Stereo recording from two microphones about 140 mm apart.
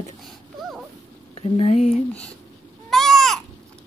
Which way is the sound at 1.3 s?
45° left (ahead or behind).